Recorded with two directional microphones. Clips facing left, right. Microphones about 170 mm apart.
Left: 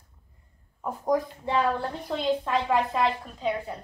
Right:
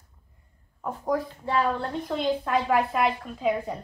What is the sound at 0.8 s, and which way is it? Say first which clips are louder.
Speech: left 2 dB; 15° left (ahead or behind).